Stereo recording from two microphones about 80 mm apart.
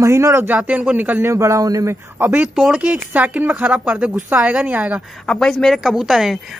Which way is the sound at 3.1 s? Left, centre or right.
Centre.